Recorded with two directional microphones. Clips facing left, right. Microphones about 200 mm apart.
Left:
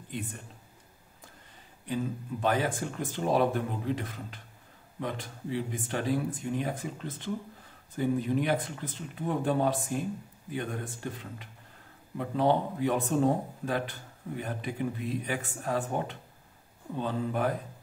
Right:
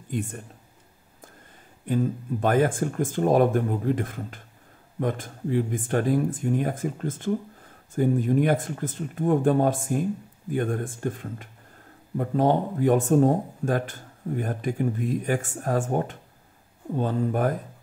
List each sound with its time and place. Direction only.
0.1 s speech: 45° right (ahead or behind)
1.9 s speech: 50° right (ahead or behind)